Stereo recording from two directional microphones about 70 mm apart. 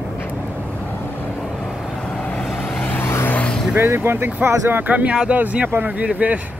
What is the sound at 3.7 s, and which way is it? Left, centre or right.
Speech, right.